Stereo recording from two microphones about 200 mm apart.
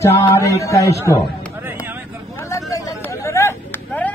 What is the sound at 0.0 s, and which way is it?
Speech, 15° left (ahead or behind).